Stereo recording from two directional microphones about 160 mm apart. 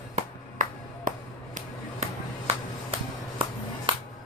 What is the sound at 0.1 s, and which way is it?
Music, 55° right (ahead or behind).